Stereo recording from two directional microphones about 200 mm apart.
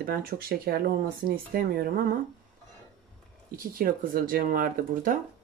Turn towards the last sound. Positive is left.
turn(degrees=-45)  # may be behind; listen again after turning